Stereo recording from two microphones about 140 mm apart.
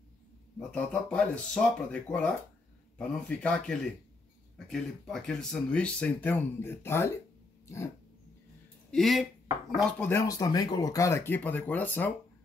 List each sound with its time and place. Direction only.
0.6 s speech: 5° left (ahead or behind)
8.9 s speech: centre (ahead or behind)
10.2 s speech: 25° left (ahead or behind)